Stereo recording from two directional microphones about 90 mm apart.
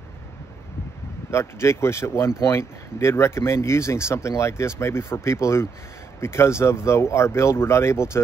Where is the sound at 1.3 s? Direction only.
30° left (ahead or behind).